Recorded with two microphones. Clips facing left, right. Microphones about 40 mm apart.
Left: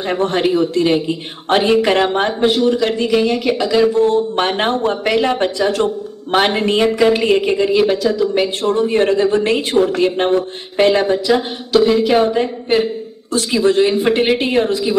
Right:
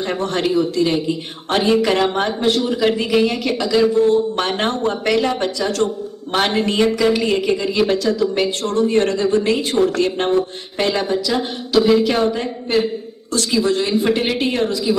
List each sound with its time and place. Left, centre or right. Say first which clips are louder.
0.0 s speech: left 4 dB; centre
2.6 s a man's voice: left 3 dB; centre
7.8 s speech: left 2 dB; centre; by 9.8 s left
9.8 s speech: left 5 dB; centre
11.7 s a man's voice: left 2 dB; centre
12.2 s speech: left 4 dB; centre